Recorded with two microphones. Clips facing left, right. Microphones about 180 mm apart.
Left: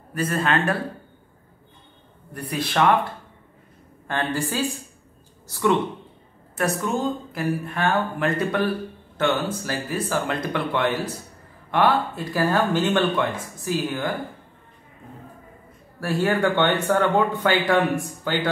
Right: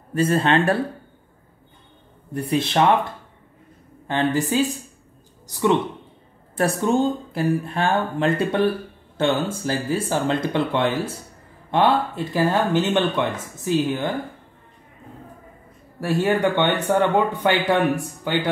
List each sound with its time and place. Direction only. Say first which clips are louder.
0.1 s speech: right 4 dB; 25° right (ahead or behind)
2.3 s speech: right 4 dB; 25° right (ahead or behind)
4.1 s speech: right 5 dB; 20° right (ahead or behind)
6.5 s speech: right 4 dB; 30° right (ahead or behind)
16.0 s speech: right 2 dB; 20° right (ahead or behind)